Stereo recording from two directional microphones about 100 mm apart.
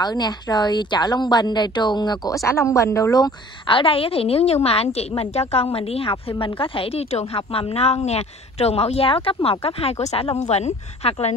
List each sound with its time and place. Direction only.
0.0 s a woman's voice: 45° left (ahead or behind)
3.6 s a woman's voice: 60° left (ahead or behind); by 10.3 s 80° left
11.1 s speech: 90° left